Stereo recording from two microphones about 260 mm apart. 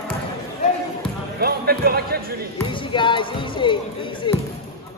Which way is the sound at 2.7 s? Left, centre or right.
Centre.